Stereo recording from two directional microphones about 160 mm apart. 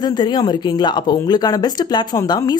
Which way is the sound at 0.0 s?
25° left (ahead or behind).